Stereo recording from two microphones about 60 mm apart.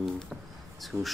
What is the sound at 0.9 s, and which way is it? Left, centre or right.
Speech, right.